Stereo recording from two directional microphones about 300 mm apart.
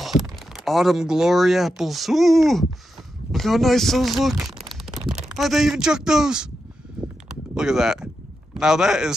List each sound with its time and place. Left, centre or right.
0.0 s speech: centre
7.5 s speech: centre